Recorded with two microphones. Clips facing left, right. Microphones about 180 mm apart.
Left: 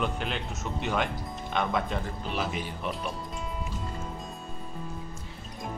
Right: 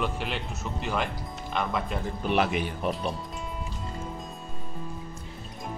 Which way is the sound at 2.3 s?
70° right (ahead or behind).